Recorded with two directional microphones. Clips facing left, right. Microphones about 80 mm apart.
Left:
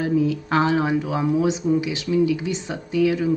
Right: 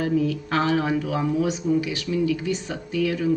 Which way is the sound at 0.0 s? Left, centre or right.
Centre.